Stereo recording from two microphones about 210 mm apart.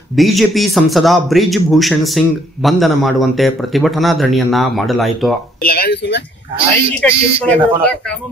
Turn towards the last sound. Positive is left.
turn(degrees=5)  # may be behind; listen again after turning